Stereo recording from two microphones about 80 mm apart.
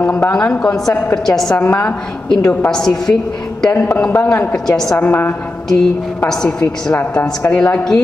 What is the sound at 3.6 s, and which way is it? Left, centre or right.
Speech, left.